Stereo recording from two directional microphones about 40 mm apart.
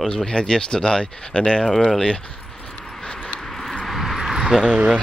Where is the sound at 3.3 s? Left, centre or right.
Centre.